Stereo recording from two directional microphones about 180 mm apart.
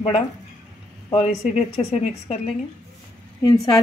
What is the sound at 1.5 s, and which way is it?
Speech, 35° left (ahead or behind).